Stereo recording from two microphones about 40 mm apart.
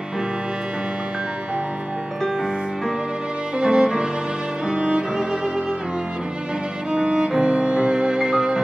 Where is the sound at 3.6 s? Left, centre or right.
Centre.